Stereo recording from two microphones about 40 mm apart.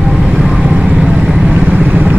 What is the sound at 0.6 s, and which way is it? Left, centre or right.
Vehicle, right.